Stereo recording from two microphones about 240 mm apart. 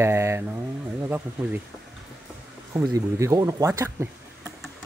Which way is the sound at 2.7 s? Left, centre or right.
Centre.